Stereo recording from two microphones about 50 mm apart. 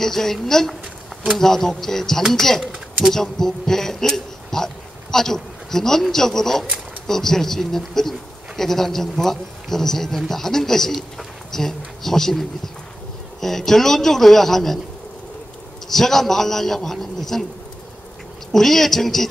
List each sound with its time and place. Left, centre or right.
0.0 s a man's voice: centre
15.9 s a man's voice: centre
18.5 s a man's voice: centre